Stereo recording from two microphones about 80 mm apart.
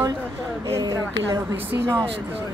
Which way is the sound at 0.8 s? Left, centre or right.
Right.